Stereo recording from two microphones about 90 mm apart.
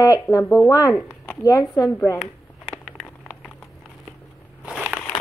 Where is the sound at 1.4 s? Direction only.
35° left (ahead or behind).